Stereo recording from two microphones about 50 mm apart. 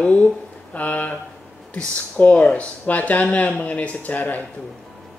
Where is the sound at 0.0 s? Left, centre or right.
Left.